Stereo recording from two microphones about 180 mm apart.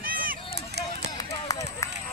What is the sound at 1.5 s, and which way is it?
Run, 20° left (ahead or behind).